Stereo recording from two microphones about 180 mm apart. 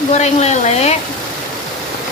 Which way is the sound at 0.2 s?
40° left (ahead or behind).